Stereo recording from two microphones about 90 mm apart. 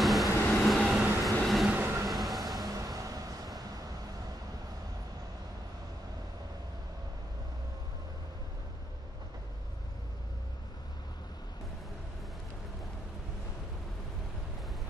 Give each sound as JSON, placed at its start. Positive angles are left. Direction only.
{"t": 0.0, "sound": "vehicle", "side_deg": 0}
{"t": 1.2, "sound": "train", "side_deg": 0}
{"t": 1.7, "sound": "train", "side_deg": -25}
{"t": 2.0, "sound": "a sound", "side_deg": 0}
{"t": 2.7, "sound": "vehicle", "side_deg": -40}